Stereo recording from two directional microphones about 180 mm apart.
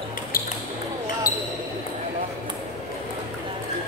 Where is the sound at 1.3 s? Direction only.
55° left (ahead or behind).